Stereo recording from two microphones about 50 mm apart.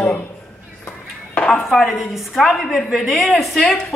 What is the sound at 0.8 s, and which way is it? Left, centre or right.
Music, left.